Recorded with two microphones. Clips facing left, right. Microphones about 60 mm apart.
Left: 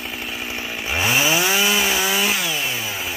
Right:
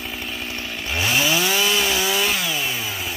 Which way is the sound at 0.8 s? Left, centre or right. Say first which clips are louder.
Left 2 dB; centre.